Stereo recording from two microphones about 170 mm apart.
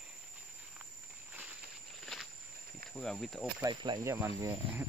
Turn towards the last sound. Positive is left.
turn(degrees=-15)  # may be behind; listen again after turning